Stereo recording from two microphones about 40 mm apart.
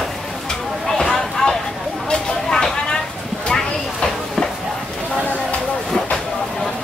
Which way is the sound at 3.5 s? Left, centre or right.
Centre.